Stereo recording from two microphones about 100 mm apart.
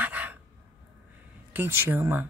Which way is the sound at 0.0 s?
15° right (ahead or behind).